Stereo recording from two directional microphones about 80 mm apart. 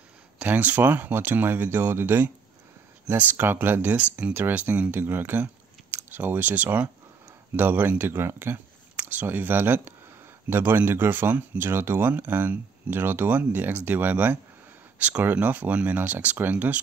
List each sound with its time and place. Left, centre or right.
0.4 s speech: right